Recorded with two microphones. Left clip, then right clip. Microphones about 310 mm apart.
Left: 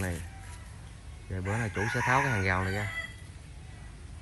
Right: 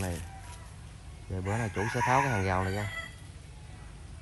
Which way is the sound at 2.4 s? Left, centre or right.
Centre.